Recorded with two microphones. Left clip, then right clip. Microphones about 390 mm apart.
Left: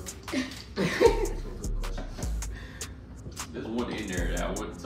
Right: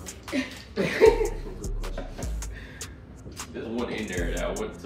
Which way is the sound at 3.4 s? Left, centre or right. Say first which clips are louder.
Right 2 dB; centre.